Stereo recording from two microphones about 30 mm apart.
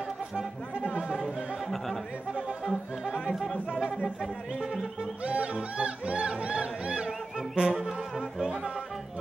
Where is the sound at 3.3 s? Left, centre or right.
Centre.